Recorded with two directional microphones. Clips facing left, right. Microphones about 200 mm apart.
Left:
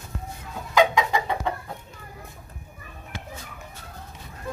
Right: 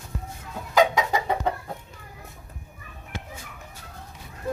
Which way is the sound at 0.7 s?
40° right (ahead or behind).